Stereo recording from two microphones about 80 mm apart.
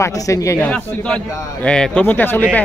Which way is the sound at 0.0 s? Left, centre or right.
Left.